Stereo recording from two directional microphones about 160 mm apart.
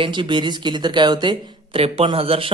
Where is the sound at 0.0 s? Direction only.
30° right (ahead or behind).